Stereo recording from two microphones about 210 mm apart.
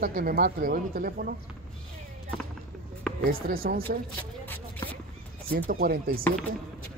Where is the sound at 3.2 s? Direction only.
45° right (ahead or behind).